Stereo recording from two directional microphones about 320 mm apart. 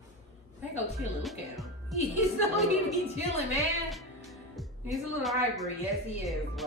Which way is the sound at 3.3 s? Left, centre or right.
Centre.